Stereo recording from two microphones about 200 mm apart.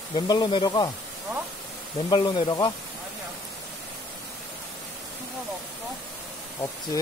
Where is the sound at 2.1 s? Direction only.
20° left (ahead or behind).